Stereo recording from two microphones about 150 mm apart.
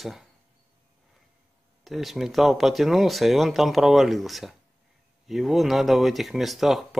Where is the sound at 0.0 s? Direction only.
Centre (ahead or behind).